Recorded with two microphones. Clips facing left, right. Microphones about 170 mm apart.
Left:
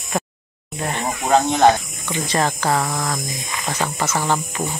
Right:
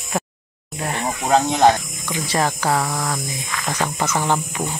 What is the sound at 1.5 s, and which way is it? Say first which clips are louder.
Speech: left 1 dB; 10° right (ahead or behind).